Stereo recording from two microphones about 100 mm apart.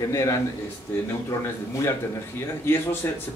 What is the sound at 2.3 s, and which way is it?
Speech, 25° left (ahead or behind).